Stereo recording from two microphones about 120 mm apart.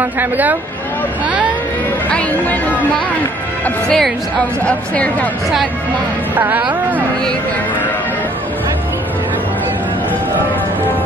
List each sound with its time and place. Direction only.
0.0 s speech: 15° right (ahead or behind)
2.0 s speech: 10° left (ahead or behind)
6.3 s speech: 15° right (ahead or behind)